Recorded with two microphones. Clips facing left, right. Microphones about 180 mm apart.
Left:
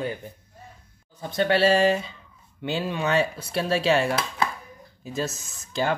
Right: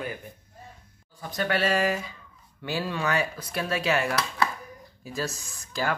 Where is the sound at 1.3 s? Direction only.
30° left (ahead or behind).